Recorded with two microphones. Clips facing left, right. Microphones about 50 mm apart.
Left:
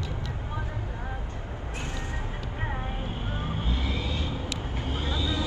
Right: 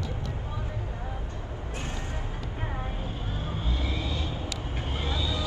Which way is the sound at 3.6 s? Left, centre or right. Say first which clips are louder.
Left 1 dB; left.